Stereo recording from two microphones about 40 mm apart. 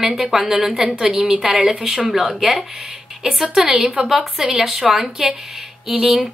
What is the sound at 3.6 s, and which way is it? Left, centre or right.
A woman's voice, centre.